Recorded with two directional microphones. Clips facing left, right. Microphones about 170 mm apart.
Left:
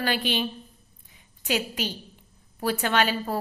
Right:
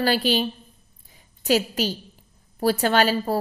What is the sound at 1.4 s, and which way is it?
A woman's voice, 35° right (ahead or behind).